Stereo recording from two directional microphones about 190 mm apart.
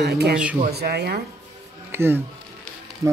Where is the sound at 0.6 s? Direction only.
60° right (ahead or behind).